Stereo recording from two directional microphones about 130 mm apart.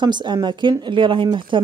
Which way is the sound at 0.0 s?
35° right (ahead or behind).